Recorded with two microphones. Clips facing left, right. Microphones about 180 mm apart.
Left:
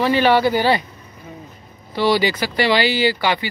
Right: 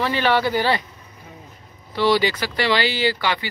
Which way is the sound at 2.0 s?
10° left (ahead or behind).